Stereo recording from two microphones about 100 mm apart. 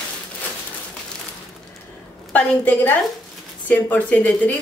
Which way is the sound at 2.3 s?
15° left (ahead or behind).